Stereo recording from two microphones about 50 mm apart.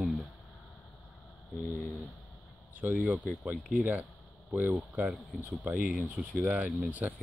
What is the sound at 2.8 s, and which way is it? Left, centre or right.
Speech, right.